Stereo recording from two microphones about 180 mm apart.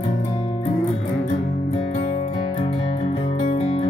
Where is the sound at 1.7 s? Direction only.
35° left (ahead or behind).